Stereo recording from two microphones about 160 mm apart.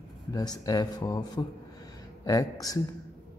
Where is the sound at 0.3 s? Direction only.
25° left (ahead or behind).